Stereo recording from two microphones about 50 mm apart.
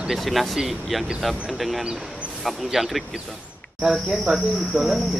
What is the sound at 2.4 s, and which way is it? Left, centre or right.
Speech, centre.